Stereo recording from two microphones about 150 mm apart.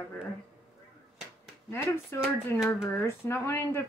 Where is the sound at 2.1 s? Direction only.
15° left (ahead or behind).